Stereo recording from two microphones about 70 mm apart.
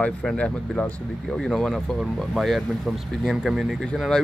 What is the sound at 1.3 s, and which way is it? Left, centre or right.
Speech, centre.